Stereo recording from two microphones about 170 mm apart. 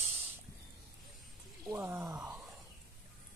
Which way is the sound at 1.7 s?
15° right (ahead or behind).